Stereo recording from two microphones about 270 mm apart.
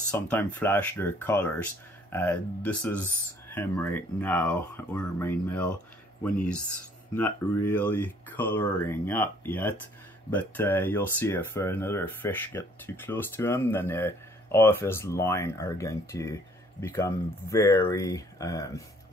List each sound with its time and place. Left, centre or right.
0.1 s speech: centre